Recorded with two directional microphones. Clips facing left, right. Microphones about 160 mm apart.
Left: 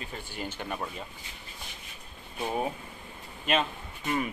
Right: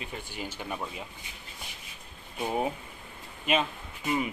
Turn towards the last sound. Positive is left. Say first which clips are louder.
# right 1 dB
turn(degrees=-10)  # may be behind; listen again after turning